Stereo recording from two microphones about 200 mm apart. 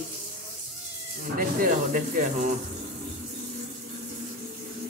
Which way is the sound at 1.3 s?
45° right (ahead or behind).